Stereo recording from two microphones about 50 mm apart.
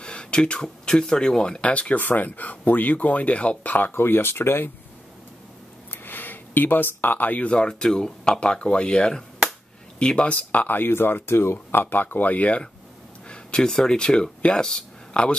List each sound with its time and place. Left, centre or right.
0.0 s speech: centre
2.0 s speech: left
3.9 s speech: left
6.0 s speech: left
7.5 s speech: centre; by 11.5 s left
11.5 s speech: left
13.3 s speech: centre